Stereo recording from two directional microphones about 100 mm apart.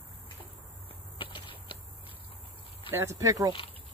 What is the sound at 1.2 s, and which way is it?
Walk, 55° left (ahead or behind).